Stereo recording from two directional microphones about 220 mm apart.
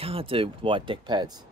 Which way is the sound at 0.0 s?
25° right (ahead or behind).